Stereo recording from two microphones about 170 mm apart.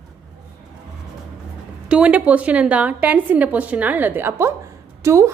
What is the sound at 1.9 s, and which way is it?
A woman's voice, 5° right (ahead or behind).